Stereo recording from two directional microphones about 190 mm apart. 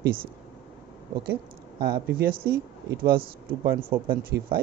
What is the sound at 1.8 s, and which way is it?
Speech, 55° right (ahead or behind).